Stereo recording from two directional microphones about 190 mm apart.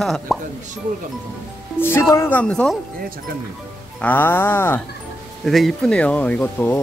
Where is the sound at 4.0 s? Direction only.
10° left (ahead or behind).